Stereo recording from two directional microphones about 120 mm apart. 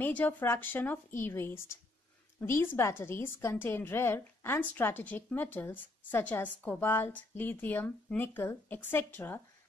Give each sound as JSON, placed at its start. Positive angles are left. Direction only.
{"t": 0.0, "sound": "a woman's voice", "side_deg": 15}